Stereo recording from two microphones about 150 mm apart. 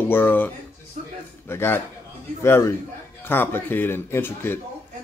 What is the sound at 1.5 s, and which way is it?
Speech, 15° left (ahead or behind).